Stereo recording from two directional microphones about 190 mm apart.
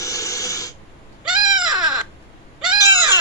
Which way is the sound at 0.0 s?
15° left (ahead or behind).